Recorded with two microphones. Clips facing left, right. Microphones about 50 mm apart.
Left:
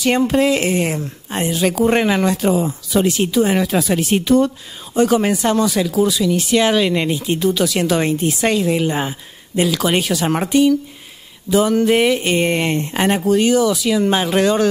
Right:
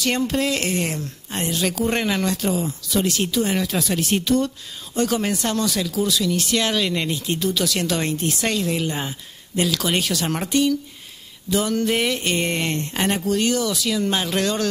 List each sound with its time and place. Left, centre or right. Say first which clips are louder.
0.0 s speech: left 7 dB; centre